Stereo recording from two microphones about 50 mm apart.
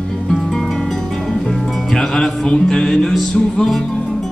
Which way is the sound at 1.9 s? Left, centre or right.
Centre.